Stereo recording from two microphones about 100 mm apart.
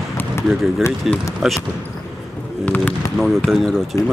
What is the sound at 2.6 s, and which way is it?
Basketball bounce, 15° left (ahead or behind).